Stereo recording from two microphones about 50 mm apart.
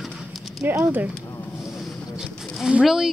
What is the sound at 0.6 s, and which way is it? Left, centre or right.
Speech, right.